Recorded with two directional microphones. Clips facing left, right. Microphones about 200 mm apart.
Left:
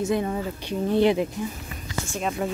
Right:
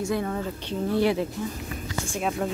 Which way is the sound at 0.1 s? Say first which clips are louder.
Left 2 dB; 15° left (ahead or behind).